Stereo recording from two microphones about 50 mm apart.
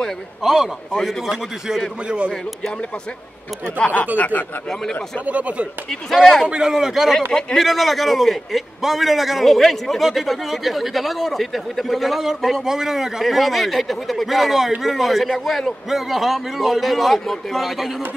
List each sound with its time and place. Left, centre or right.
0.4 s a man's voice: centre
2.0 s speech: right
3.6 s speech: left
4.2 s speech: left
5.2 s speech: right
6.4 s a man's voice: centre
7.3 s speech: centre
7.6 s a man's voice: centre